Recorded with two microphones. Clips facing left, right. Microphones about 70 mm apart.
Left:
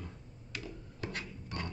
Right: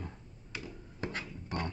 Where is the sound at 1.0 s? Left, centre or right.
Right.